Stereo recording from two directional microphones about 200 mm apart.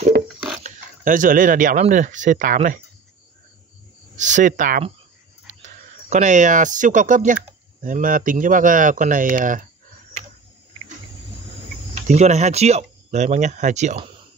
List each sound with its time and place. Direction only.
0.7 s speech: 40° right (ahead or behind)
4.2 s speech: 40° right (ahead or behind)
11.9 s speech: 35° right (ahead or behind)